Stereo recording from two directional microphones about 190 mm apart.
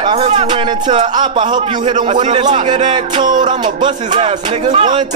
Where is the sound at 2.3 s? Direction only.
25° right (ahead or behind).